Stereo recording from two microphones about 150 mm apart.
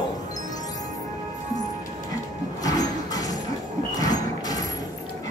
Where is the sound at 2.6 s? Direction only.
25° left (ahead or behind).